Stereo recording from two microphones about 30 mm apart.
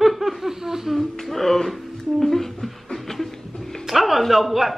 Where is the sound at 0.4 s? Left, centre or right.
Centre.